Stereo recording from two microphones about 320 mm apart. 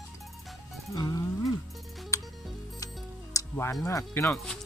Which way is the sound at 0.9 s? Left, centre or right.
Centre.